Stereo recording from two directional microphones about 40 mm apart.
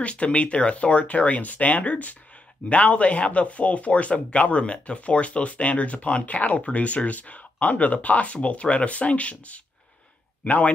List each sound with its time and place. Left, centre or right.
0.0 s speech: left